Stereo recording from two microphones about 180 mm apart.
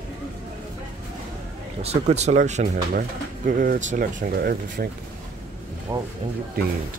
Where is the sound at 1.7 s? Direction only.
35° right (ahead or behind); by 4.9 s 55° right (ahead or behind).